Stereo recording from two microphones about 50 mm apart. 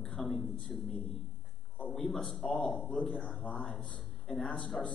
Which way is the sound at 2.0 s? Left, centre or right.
Centre.